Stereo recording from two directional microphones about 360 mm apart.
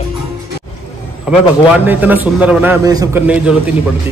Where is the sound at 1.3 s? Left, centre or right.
Centre.